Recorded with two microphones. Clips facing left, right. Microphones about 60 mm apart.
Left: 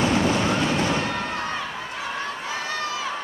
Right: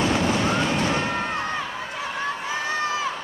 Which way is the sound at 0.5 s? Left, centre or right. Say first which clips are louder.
Even; centre.